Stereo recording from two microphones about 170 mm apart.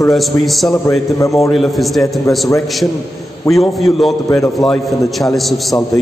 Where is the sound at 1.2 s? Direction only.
20° left (ahead or behind).